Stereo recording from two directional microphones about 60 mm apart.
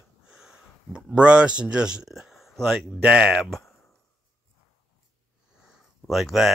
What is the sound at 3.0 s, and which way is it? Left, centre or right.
Speech, centre.